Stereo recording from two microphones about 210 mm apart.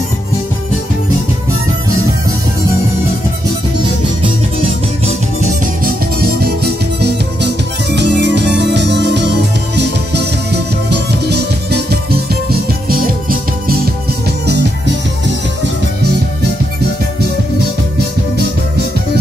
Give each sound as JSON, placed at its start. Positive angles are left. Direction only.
{"t": 6.1, "sound": "music", "side_deg": -50}